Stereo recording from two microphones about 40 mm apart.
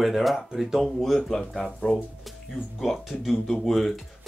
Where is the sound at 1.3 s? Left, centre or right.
Centre.